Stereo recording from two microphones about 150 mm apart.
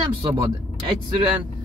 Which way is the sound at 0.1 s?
35° right (ahead or behind).